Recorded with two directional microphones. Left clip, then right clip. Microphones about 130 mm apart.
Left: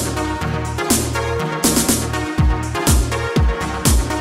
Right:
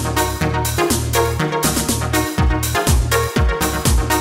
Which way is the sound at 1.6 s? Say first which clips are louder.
Left 1 dB; centre (ahead or behind).